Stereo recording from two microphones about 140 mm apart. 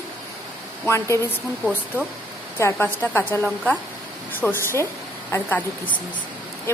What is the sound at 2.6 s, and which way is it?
Speech, 15° left (ahead or behind).